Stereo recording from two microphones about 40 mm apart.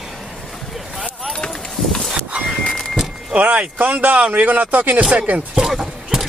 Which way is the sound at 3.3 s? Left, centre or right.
Right.